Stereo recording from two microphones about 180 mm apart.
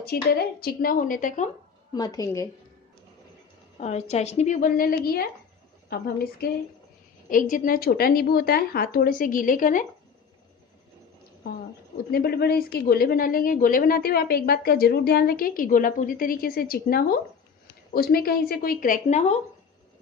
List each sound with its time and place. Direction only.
0.0 s a woman's voice: 60° left (ahead or behind)
2.0 s a woman's voice: 20° left (ahead or behind)
3.8 s a woman's voice: 40° left (ahead or behind); by 6.5 s 60° left (ahead or behind)
7.2 s a woman's voice: 50° left (ahead or behind)
12.1 s a woman's voice: 60° left (ahead or behind); by 19.3 s 40° left (ahead or behind)